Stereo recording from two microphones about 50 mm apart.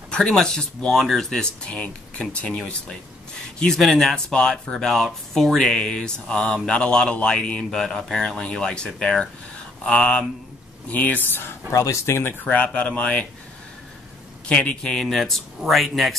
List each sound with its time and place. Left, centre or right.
0.3 s speech: centre
2.5 s speech: centre
4.6 s speech: centre; by 10.2 s left
10.9 s speech: left
11.2 s speech: left
11.7 s speech: left
12.4 s speech: left
14.5 s speech: left
15.0 s speech: centre